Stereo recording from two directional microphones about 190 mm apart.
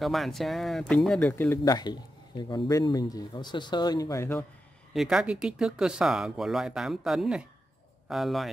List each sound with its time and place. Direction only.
0.0 s speech: centre (ahead or behind)
4.9 s speech: 5° right (ahead or behind)